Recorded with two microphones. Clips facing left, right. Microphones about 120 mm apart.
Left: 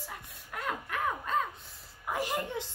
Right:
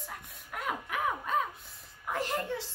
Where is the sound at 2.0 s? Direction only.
10° left (ahead or behind).